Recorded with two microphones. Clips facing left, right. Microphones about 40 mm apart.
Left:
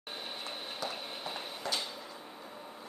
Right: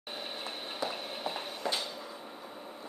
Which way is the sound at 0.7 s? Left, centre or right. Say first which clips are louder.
Right 5 dB; centre.